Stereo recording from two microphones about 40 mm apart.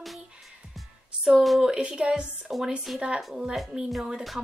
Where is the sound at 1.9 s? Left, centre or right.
Right.